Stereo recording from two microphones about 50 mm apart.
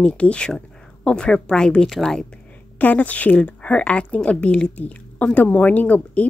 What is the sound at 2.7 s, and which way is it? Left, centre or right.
A woman's voice, left.